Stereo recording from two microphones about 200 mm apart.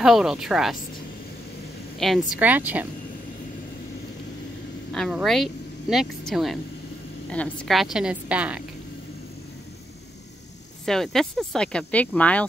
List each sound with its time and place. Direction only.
0.0 s speech: centre (ahead or behind)
2.0 s speech: centre (ahead or behind)
4.9 s speech: centre (ahead or behind)
10.9 s speech: centre (ahead or behind)